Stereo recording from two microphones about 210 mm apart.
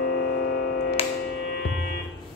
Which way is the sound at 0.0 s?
45° left (ahead or behind).